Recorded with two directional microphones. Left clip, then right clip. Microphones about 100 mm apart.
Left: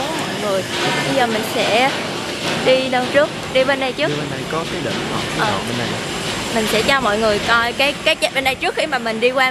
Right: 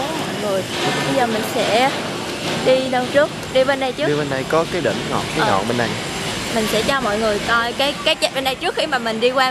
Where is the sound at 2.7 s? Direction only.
Centre (ahead or behind).